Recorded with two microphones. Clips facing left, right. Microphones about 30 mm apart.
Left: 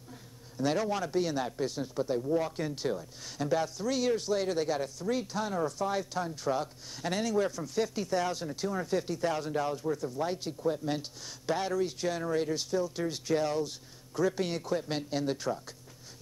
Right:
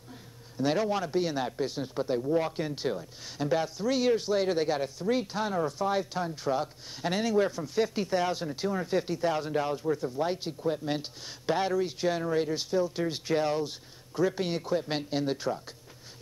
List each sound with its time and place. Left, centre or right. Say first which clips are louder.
0.6 s speech: right 2 dB; centre